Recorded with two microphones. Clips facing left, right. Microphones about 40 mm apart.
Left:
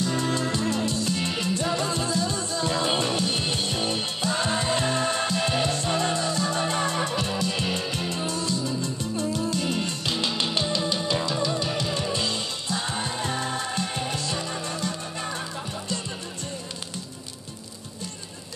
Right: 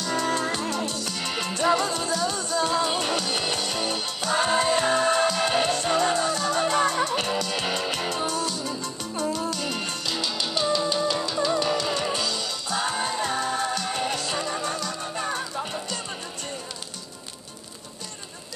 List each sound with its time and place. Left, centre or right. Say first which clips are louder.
0.0 s music: even; right
2.7 s music: left 2 dB; left
3.0 s music: even; right
4.2 s music: right 5 dB; right
10.1 s music: left 2 dB; left
11.6 s music: right 3 dB; right
12.2 s music: even; left
12.6 s music: right 4 dB; right
15.3 s music: right 3 dB; right